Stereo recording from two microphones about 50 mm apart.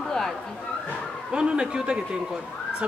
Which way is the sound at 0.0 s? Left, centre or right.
Centre.